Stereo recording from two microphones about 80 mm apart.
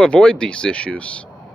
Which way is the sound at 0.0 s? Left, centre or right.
Centre.